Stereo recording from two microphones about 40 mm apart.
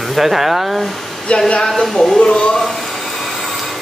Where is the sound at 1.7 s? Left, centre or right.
Centre.